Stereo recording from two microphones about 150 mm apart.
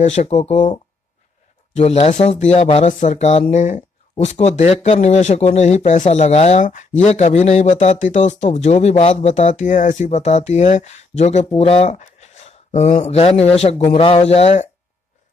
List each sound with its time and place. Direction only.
0.0 s speech: 50° left (ahead or behind)
1.8 s speech: 45° left (ahead or behind)